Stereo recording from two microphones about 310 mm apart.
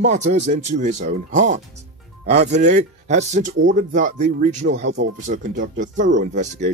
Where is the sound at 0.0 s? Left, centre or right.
Right.